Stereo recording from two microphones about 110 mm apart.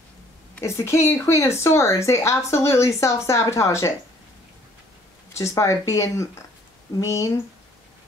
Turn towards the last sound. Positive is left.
turn(degrees=30)  # may be behind; listen again after turning